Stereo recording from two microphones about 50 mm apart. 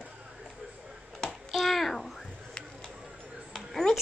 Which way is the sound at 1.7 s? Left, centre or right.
Centre.